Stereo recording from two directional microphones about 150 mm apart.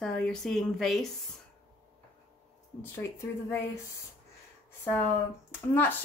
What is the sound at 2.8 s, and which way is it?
Speech, 15° left (ahead or behind).